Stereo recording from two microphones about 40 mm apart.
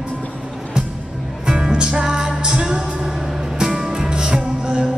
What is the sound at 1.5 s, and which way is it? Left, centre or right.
Music, centre.